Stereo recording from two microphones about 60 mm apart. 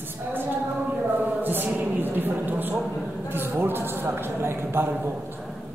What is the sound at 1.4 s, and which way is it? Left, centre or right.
A man's voice, right.